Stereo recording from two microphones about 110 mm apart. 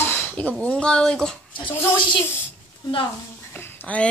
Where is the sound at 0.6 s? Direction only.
10° left (ahead or behind).